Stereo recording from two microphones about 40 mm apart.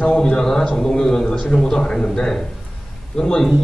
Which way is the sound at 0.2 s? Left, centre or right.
Centre.